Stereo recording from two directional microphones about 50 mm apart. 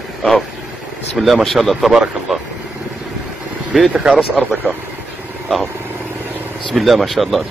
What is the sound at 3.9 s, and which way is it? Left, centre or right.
Speech, centre.